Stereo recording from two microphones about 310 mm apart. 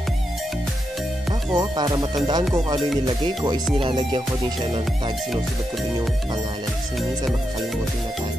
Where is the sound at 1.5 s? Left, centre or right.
Centre.